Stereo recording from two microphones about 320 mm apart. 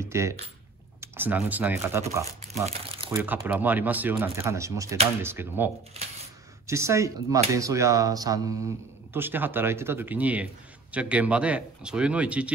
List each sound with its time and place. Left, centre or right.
0.0 s speech: centre
6.7 s speech: centre